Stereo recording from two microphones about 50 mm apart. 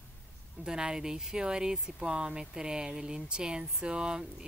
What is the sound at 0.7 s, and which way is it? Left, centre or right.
Speech, centre.